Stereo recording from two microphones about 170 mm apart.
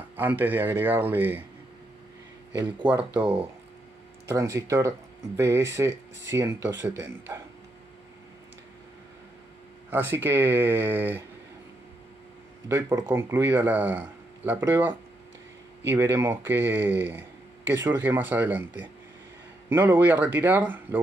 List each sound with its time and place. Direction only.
0.1 s speech: 10° right (ahead or behind)
2.6 s speech: 10° right (ahead or behind)
4.3 s speech: 20° right (ahead or behind)
9.8 s speech: 10° right (ahead or behind)
12.6 s speech: 15° right (ahead or behind)